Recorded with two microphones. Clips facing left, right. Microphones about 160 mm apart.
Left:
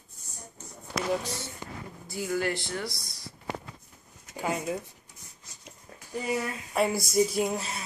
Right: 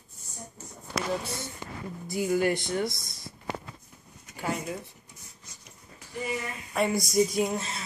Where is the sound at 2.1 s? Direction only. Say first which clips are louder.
Right 4 dB; 20° right (ahead or behind).